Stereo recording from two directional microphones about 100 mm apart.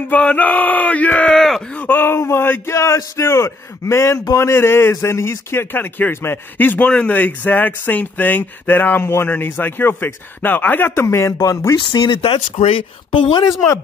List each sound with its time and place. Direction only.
0.1 s speech: 15° left (ahead or behind)
11.8 s speech: 50° left (ahead or behind); by 12.8 s 70° left (ahead or behind)
13.1 s speech: 50° left (ahead or behind)